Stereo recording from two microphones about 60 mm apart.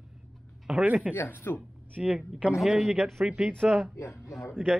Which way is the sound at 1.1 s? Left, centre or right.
Left.